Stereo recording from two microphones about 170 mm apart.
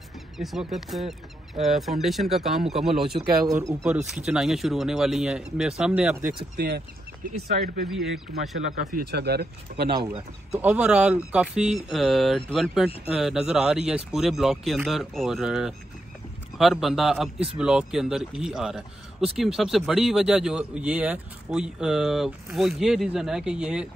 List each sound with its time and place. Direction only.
0.4 s a man's voice: centre (ahead or behind)
3.4 s speech: 20° right (ahead or behind)
3.8 s a man's voice: centre (ahead or behind)
6.5 s speech: 70° right (ahead or behind)
7.4 s speech: 60° right (ahead or behind)
7.9 s a man's voice: centre (ahead or behind)
8.9 s speech: 70° right (ahead or behind)
10.5 s a man's voice: 10° right (ahead or behind)